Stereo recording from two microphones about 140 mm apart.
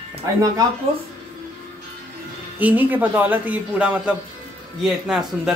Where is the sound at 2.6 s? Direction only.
10° right (ahead or behind).